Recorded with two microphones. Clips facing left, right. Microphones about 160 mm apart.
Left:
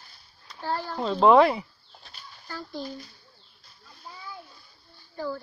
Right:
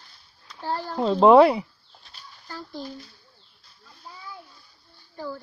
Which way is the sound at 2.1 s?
5° left (ahead or behind).